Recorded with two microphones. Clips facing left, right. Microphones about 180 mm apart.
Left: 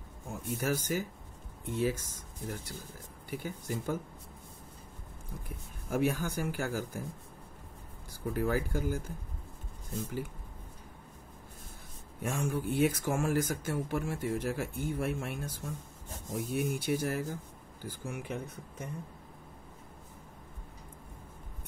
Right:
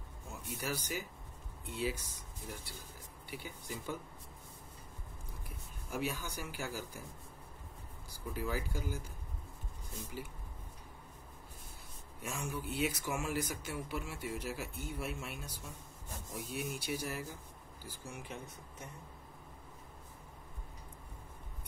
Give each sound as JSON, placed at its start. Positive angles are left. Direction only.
{"t": 0.3, "sound": "speech", "side_deg": 50}
{"t": 5.9, "sound": "speech", "side_deg": 50}
{"t": 8.3, "sound": "speech", "side_deg": 55}
{"t": 12.2, "sound": "speech", "side_deg": 55}
{"t": 17.8, "sound": "speech", "side_deg": 60}